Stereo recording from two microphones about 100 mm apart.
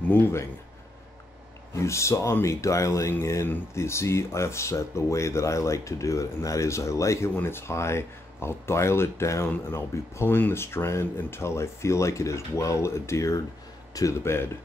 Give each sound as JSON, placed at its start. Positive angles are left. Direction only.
{"t": 0.1, "sound": "speech", "side_deg": 25}
{"t": 1.8, "sound": "speech", "side_deg": 30}